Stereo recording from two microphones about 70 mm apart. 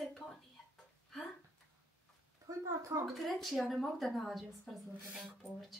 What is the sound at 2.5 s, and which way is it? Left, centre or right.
Speech, right.